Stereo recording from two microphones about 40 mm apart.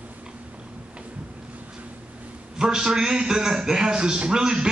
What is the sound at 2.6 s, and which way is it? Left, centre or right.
A man's voice, centre.